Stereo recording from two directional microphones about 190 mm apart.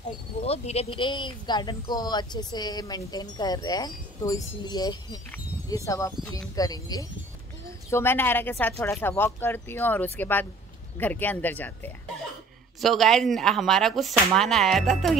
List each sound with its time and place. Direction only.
0.4 s speech: 30° left (ahead or behind); by 15.1 s centre (ahead or behind)